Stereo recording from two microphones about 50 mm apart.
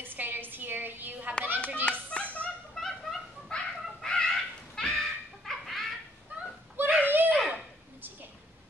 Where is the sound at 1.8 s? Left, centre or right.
Left.